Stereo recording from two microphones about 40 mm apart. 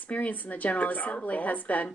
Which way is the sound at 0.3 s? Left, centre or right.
Left.